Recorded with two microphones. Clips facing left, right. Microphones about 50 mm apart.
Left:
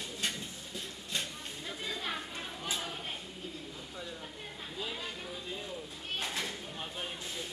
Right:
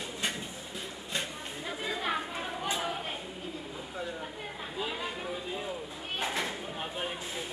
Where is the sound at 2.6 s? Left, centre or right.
Centre.